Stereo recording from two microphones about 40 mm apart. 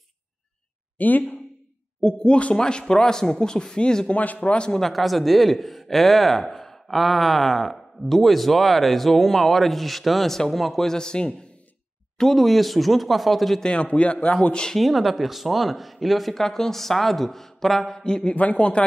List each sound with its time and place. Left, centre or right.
0.9 s speech: left
2.0 s speech: centre
4.1 s a man's voice: left
4.4 s speech: left
4.7 s speech: centre
10.9 s speech: centre
12.2 s speech: centre
13.6 s speech: left
14.8 s speech: centre
18.3 s a man's voice: left